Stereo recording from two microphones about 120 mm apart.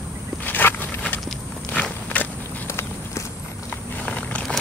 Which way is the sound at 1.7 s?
10° left (ahead or behind).